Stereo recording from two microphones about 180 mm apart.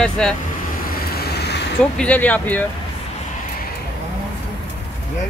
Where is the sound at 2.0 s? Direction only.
10° left (ahead or behind).